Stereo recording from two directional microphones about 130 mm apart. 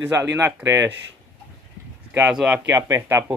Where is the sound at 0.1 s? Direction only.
20° right (ahead or behind).